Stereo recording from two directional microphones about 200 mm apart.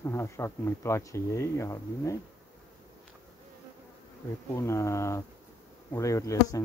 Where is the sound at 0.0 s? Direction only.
15° left (ahead or behind).